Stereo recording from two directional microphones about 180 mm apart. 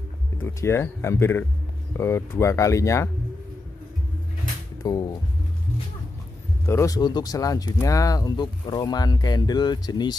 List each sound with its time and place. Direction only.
0.4 s speech: 15° left (ahead or behind)
4.8 s speech: 20° left (ahead or behind)
6.6 s speech: 15° left (ahead or behind)